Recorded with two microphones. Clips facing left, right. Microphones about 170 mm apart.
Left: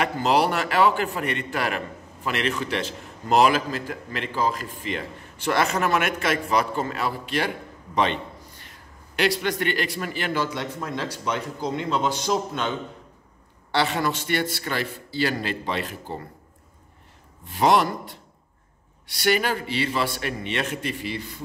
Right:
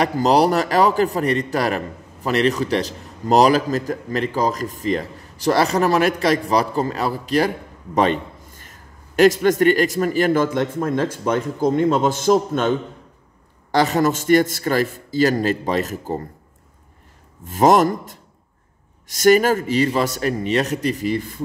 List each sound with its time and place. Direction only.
0.0 s a man's voice: 40° right (ahead or behind)
17.5 s a man's voice: 45° right (ahead or behind)